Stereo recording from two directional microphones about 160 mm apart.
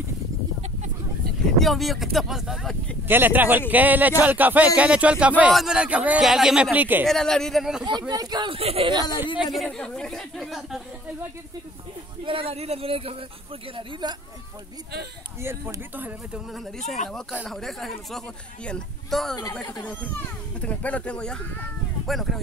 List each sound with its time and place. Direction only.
1.6 s speech: centre (ahead or behind)
3.1 s speech: 10° right (ahead or behind)
7.1 s speech: centre (ahead or behind)
8.1 s speech: 25° right (ahead or behind)
9.4 s speech: centre (ahead or behind)
12.3 s speech: 35° right (ahead or behind)
15.4 s speech: 15° right (ahead or behind)
16.5 s speech: centre (ahead or behind)